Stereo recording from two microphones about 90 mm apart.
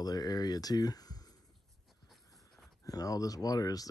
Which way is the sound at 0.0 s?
45° left (ahead or behind).